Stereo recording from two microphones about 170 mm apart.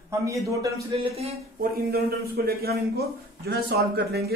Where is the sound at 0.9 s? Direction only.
35° right (ahead or behind).